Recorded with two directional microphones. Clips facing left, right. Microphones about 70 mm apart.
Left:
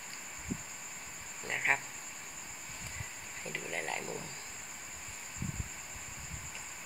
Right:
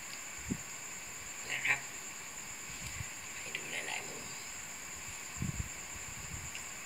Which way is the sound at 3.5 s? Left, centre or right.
Left.